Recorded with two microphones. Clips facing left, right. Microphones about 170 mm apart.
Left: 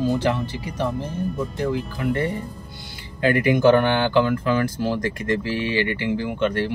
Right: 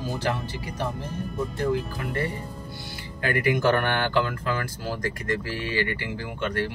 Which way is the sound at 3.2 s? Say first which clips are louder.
Left 6 dB; 25° left (ahead or behind).